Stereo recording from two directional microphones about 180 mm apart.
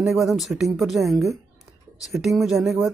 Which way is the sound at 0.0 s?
Centre (ahead or behind).